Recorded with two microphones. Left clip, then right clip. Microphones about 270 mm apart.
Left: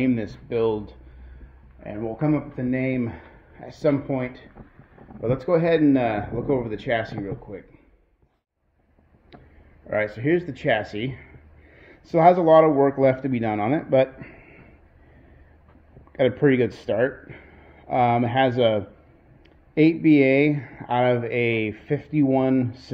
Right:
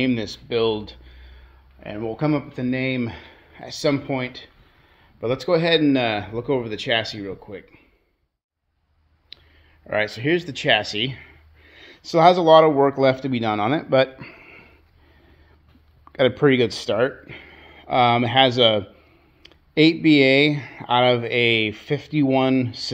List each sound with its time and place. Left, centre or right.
0.5 s speech: right
9.8 s speech: centre
16.1 s a sound: right
16.4 s speech: right